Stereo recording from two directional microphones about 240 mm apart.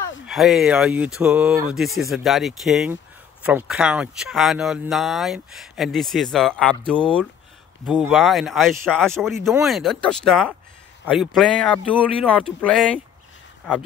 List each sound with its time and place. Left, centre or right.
0.3 s speech: centre